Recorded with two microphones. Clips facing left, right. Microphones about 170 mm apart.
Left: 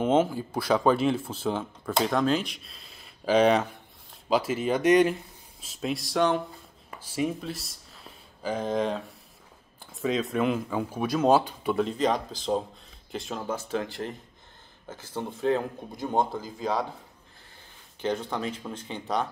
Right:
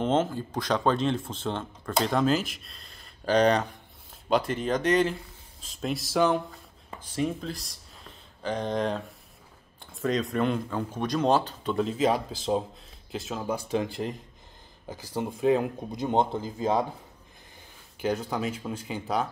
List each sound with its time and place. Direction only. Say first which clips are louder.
0.0 s speech: left 2 dB; 10° left (ahead or behind)
11.8 s speech: right 2 dB; 5° right (ahead or behind)
13.5 s speech: right 3 dB; 15° right (ahead or behind)
15.1 s speech: right 2 dB; 15° right (ahead or behind)
18.0 s speech: right 1 dB; 5° right (ahead or behind)